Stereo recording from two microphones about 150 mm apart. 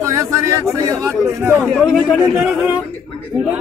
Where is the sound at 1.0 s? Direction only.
20° right (ahead or behind).